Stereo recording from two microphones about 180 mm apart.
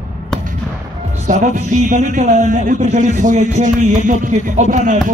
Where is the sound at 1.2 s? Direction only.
45° right (ahead or behind).